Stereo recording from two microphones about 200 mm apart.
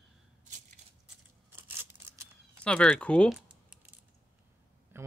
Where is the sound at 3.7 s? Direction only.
10° right (ahead or behind).